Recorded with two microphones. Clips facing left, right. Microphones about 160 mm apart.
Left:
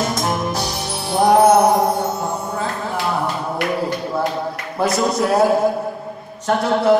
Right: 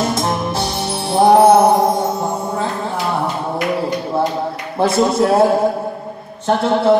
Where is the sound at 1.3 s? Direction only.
30° right (ahead or behind).